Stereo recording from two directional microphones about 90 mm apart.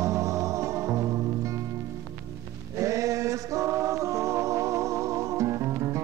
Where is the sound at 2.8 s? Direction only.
35° right (ahead or behind).